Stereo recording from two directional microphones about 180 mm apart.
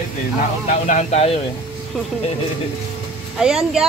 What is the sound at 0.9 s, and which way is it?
Speech, 40° left (ahead or behind).